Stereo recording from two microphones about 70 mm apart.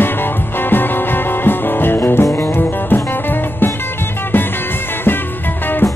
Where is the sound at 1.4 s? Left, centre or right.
Left.